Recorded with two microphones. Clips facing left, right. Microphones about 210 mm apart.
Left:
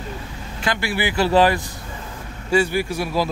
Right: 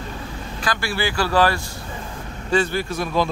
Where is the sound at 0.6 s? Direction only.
20° left (ahead or behind).